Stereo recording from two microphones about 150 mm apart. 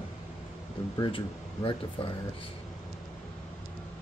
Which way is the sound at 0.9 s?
35° left (ahead or behind).